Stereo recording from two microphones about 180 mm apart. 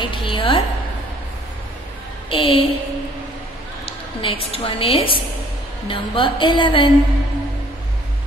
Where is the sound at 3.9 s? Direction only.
30° left (ahead or behind).